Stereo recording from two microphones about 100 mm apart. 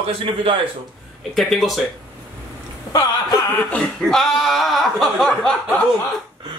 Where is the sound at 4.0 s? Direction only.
5° left (ahead or behind).